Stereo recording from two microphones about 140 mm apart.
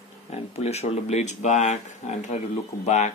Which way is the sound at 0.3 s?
50° left (ahead or behind).